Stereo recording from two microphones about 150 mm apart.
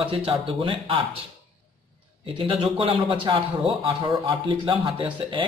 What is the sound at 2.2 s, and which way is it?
A man's voice, 35° right (ahead or behind).